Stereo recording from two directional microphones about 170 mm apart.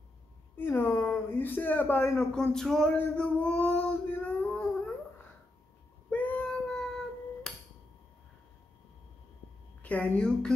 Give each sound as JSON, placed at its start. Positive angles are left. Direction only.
{"t": 0.6, "sound": "speech", "side_deg": 10}
{"t": 2.3, "sound": "male singing", "side_deg": 5}
{"t": 6.0, "sound": "child singing", "side_deg": 10}
{"t": 7.5, "sound": "a sound", "side_deg": 5}
{"t": 9.8, "sound": "speech", "side_deg": 5}